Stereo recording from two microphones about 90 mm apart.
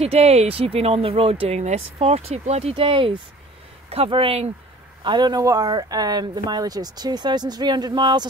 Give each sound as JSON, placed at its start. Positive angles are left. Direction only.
{"t": 0.1, "sound": "speech", "side_deg": -90}
{"t": 3.9, "sound": "speech", "side_deg": -85}
{"t": 5.0, "sound": "speech", "side_deg": -55}